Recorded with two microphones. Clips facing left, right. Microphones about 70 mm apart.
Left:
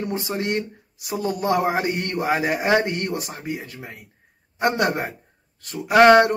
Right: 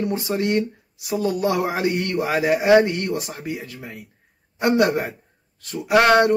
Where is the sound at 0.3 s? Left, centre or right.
Centre.